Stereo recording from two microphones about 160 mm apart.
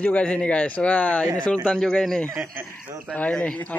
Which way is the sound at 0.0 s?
10° left (ahead or behind).